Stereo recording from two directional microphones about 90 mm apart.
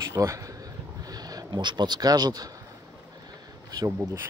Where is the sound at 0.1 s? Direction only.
35° right (ahead or behind).